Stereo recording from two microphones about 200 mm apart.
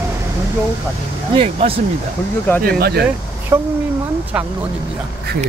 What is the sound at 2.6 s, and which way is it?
Speech, 50° right (ahead or behind).